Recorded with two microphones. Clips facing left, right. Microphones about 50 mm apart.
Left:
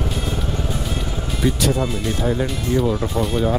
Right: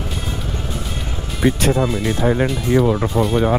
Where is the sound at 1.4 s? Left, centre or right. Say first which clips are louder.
Right 4 dB; right.